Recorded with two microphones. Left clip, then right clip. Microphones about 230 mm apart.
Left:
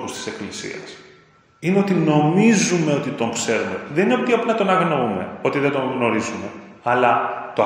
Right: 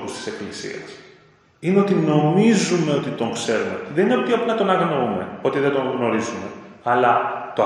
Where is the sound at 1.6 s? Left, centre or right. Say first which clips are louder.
Right 1 dB; left.